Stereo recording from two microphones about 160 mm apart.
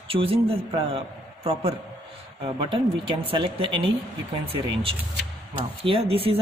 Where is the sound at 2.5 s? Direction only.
35° right (ahead or behind).